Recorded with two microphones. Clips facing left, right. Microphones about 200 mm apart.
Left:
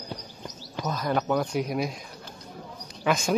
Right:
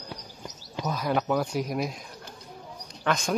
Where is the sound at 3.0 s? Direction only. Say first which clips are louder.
Left 2 dB; 5° left (ahead or behind).